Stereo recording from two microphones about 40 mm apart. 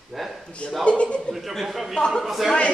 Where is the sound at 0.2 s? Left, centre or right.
Centre.